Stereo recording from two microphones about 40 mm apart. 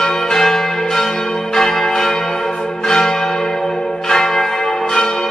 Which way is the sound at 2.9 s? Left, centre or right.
Centre.